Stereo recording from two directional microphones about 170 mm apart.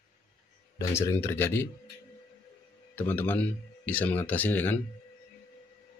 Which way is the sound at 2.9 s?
10° left (ahead or behind).